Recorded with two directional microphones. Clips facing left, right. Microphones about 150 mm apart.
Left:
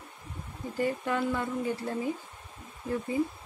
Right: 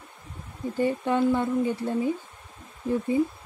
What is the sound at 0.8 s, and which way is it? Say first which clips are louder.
Speech: right 6 dB; 25° right (ahead or behind).